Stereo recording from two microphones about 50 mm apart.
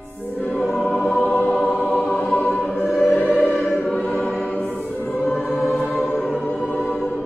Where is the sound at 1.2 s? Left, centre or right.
Left.